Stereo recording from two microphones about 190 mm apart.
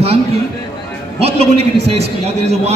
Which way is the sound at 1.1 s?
35° right (ahead or behind).